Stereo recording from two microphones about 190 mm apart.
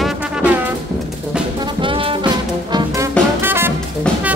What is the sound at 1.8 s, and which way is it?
Music, 25° right (ahead or behind).